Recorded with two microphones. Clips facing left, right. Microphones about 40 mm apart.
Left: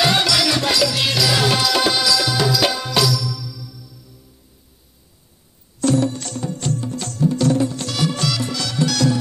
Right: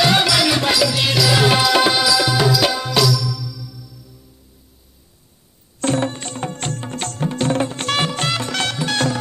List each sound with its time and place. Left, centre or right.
0.0 s music: centre
1.4 s music: right; by 3.9 s centre
5.8 s music: right
6.4 s music: right